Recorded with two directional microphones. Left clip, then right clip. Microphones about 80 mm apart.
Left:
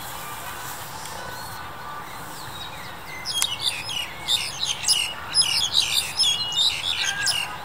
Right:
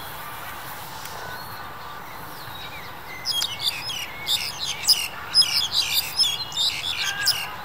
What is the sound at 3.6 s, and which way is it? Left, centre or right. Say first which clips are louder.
Bird: even; centre.